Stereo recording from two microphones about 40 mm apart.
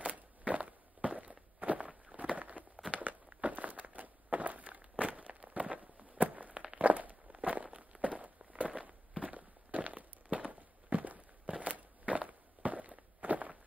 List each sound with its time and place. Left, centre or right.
0.0 s walk: right